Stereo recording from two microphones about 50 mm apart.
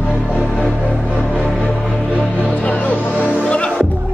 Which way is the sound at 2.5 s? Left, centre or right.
Left.